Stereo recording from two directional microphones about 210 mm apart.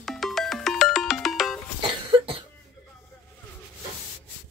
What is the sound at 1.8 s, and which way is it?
Cough, 25° right (ahead or behind).